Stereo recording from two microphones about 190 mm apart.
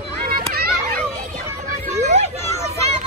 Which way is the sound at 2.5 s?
15° left (ahead or behind).